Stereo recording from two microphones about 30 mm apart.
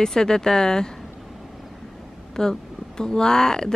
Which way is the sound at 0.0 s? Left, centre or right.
Left.